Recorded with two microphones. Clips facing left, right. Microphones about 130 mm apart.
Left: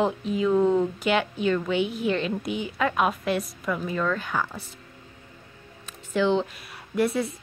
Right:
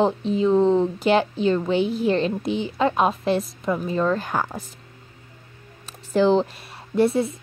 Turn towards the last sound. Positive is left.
turn(degrees=-25)  # may be behind; listen again after turning